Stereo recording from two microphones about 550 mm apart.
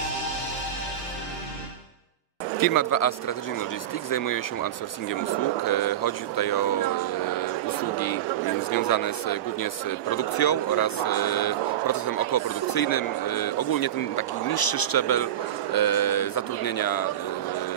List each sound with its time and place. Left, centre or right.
2.6 s speech: left
8.6 s speech: left